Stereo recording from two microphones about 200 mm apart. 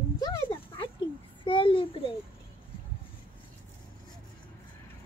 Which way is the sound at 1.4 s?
25° left (ahead or behind).